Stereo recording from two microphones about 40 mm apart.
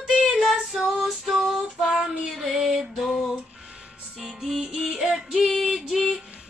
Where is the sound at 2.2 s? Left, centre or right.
Centre.